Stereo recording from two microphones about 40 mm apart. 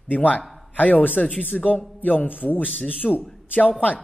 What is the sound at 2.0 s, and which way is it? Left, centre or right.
Speech, left.